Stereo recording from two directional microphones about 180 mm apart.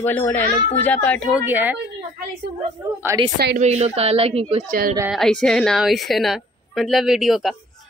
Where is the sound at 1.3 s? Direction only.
10° right (ahead or behind).